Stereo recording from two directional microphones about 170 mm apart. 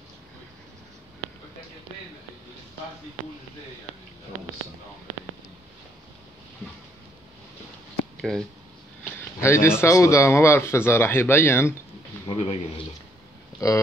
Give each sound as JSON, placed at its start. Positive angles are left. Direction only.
{"t": 8.2, "sound": "speech", "side_deg": 0}
{"t": 9.4, "sound": "speech", "side_deg": 15}
{"t": 12.3, "sound": "speech", "side_deg": 35}
{"t": 13.6, "sound": "speech", "side_deg": 20}